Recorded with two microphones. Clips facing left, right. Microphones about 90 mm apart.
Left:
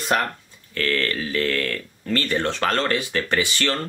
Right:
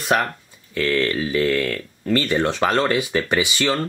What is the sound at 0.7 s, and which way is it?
Speech, 15° right (ahead or behind).